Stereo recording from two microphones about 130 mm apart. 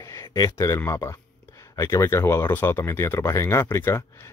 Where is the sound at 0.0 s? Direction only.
25° left (ahead or behind).